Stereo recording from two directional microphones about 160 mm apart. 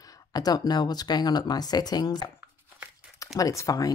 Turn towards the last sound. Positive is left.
turn(degrees=20)  # may be behind; listen again after turning